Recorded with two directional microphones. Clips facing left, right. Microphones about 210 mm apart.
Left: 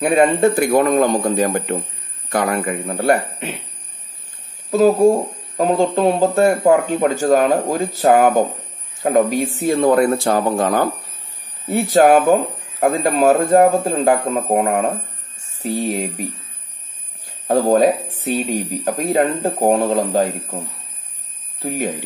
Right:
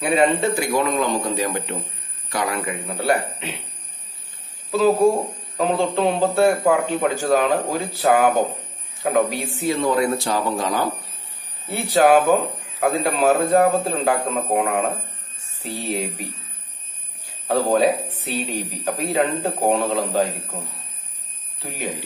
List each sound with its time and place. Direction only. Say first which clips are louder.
0.0 s speech: left 5 dB; 50° left (ahead or behind)
4.6 s speech: left 4 dB; 45° left (ahead or behind)
17.5 s speech: left 4 dB; 45° left (ahead or behind)
21.5 s speech: left 7 dB; 45° left (ahead or behind)